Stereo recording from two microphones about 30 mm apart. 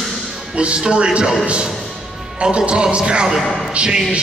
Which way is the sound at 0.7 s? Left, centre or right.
Right.